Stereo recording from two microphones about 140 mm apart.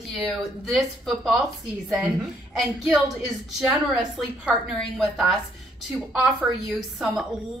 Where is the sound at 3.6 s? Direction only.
5° right (ahead or behind).